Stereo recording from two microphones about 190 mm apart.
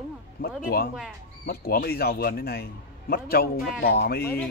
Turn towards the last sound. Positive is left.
turn(degrees=55)  # may be behind; listen again after turning